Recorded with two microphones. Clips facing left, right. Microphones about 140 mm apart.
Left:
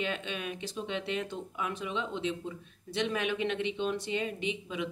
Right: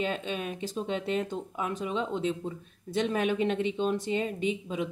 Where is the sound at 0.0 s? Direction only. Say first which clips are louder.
Right 4 dB; 35° right (ahead or behind).